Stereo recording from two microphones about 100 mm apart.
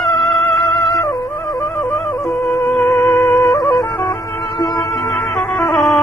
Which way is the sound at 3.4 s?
45° left (ahead or behind).